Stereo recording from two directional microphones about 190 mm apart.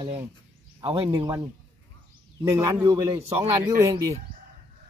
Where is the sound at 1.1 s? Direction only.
20° right (ahead or behind).